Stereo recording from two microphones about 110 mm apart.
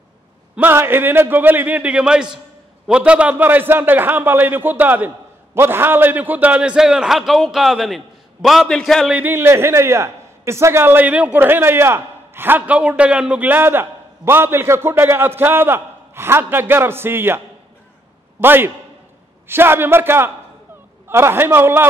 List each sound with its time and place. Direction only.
0.6 s a man's voice: 20° right (ahead or behind); by 9.1 s 5° left (ahead or behind)
9.1 s a man's voice: 20° right (ahead or behind)
18.4 s a man's voice: 20° right (ahead or behind)